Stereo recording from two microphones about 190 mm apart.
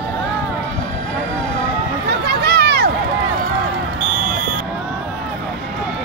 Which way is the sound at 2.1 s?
55° right (ahead or behind).